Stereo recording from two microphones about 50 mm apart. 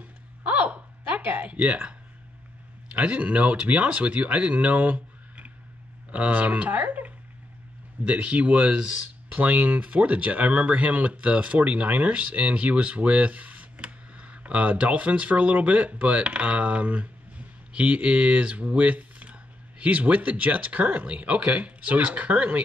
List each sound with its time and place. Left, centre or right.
0.0 s a sound: right
1.4 s speech: right
8.0 s speech: right
9.3 s speech: right